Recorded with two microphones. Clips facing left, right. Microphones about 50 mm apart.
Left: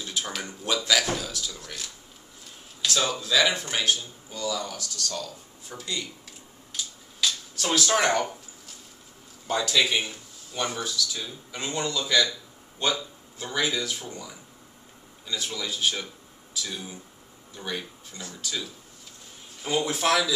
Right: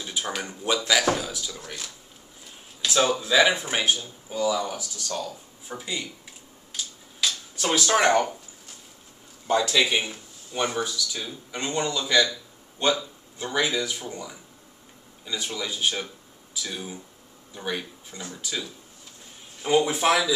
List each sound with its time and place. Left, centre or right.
0.0 s speech: centre
7.2 s speech: centre
9.5 s speech: centre